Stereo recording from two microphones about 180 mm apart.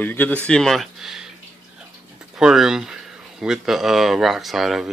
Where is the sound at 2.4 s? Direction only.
Centre (ahead or behind).